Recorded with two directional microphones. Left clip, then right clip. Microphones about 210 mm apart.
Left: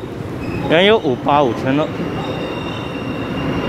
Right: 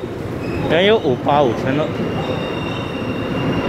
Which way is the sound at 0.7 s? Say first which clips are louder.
Left 2 dB; 20° left (ahead or behind).